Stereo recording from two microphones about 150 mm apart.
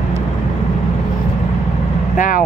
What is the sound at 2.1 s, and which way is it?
Vehicle, 65° left (ahead or behind).